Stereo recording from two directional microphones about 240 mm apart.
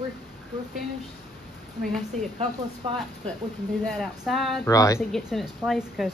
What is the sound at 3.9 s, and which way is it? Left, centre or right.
Speech, centre.